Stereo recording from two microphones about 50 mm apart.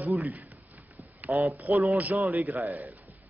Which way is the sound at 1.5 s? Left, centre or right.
Right.